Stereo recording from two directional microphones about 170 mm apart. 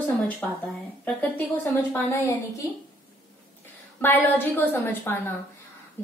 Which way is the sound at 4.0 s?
10° left (ahead or behind).